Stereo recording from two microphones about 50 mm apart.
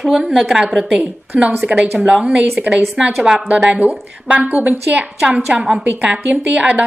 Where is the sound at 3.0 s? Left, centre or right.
Centre.